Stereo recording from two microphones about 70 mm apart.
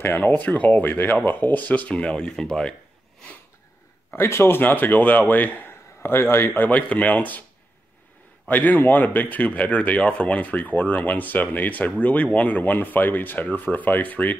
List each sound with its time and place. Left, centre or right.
0.0 s speech: left; by 2.7 s centre
4.1 s speech: left
8.5 s speech: left